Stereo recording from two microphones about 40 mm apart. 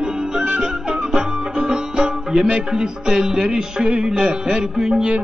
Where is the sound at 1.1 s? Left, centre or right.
Centre.